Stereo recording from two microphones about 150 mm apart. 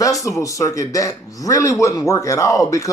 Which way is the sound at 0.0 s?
20° left (ahead or behind).